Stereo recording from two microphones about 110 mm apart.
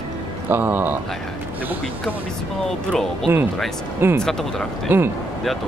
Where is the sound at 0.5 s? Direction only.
20° right (ahead or behind).